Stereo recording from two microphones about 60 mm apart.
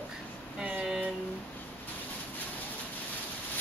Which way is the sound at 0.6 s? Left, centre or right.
Centre.